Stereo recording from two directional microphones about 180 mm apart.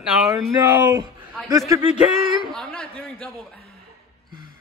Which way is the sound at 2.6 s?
5° left (ahead or behind).